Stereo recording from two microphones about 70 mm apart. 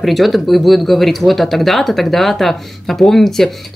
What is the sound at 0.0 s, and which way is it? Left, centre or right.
Speech, centre.